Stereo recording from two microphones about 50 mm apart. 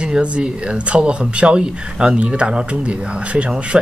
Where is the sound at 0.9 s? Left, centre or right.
Right.